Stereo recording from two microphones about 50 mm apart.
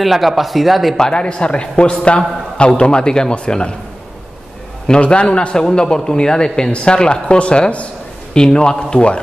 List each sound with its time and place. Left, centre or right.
0.0 s speech: centre
0.9 s a man's voice: centre
4.8 s a man's voice: left